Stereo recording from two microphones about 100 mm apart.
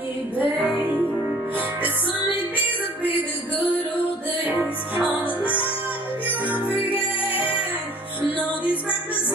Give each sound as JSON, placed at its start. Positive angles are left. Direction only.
{"t": 0.4, "sound": "music", "side_deg": -15}
{"t": 4.5, "sound": "music", "side_deg": -20}
{"t": 6.2, "sound": "music", "side_deg": -15}